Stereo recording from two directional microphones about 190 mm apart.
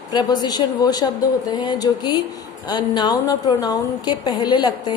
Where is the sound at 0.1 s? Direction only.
20° left (ahead or behind).